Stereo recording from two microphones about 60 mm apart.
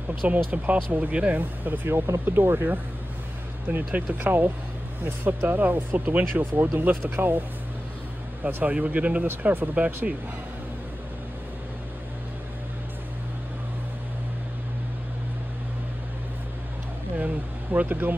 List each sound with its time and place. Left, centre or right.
0.5 s speech: right
2.2 s speech: right
8.5 s speech: right
17.2 s speech: right